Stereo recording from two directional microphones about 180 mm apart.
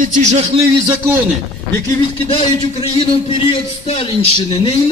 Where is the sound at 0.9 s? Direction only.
10° right (ahead or behind).